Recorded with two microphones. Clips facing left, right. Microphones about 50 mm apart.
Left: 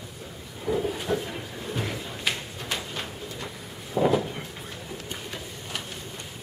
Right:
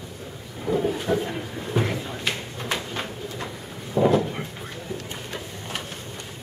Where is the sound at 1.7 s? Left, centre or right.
Right.